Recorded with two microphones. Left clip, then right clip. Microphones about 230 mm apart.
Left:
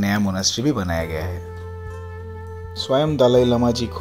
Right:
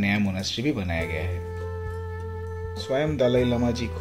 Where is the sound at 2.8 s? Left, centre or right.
Left.